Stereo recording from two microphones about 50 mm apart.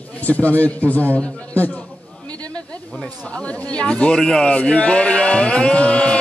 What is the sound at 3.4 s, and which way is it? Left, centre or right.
Speech, left.